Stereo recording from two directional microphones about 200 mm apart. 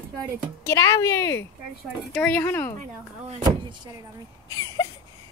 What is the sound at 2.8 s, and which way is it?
Speech, 35° right (ahead or behind).